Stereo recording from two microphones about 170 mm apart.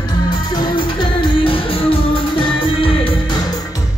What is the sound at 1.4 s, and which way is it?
Music, 30° left (ahead or behind).